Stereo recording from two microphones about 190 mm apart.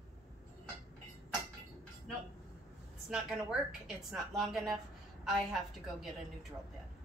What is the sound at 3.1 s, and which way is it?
A woman's voice, centre (ahead or behind).